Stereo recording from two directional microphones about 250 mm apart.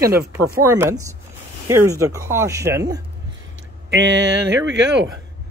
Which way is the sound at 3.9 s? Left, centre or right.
Right.